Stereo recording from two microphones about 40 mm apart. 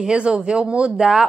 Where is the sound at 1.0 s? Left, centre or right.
Centre.